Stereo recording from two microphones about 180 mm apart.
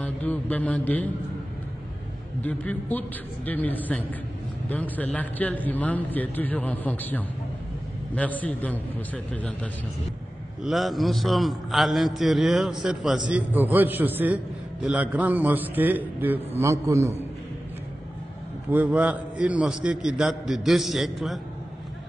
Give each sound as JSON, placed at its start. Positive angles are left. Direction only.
{"t": 0.0, "sound": "a man's voice", "side_deg": 10}
{"t": 2.4, "sound": "a man's voice", "side_deg": 10}
{"t": 18.7, "sound": "a man's voice", "side_deg": -10}